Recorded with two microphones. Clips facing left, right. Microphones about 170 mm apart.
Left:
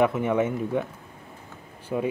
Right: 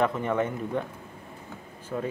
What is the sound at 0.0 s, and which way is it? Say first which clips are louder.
Speech: left 3 dB; 10° left (ahead or behind).